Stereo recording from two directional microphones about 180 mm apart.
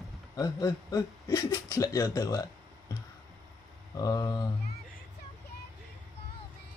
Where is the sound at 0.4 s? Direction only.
20° left (ahead or behind).